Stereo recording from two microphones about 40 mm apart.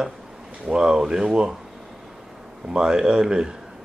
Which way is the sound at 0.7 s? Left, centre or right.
Centre.